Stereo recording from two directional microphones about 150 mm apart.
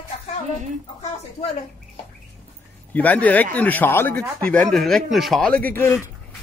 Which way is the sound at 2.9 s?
10° left (ahead or behind).